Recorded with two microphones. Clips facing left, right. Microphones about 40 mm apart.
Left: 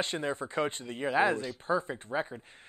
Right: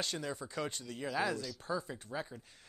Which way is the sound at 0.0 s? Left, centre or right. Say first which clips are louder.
Left 7 dB; left.